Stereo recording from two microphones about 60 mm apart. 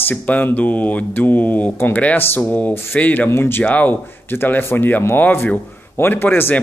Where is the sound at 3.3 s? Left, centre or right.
Left.